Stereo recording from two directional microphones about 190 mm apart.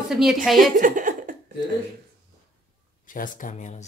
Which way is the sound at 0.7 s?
45° right (ahead or behind).